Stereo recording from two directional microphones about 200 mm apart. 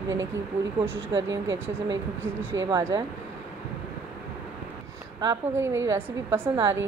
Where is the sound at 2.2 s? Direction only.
15° right (ahead or behind).